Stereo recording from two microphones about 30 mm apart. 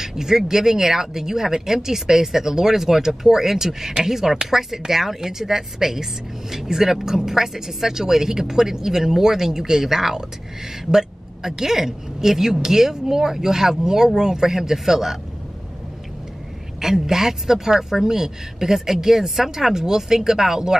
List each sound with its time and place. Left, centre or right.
0.0 s a woman's voice: centre
16.8 s a woman's voice: centre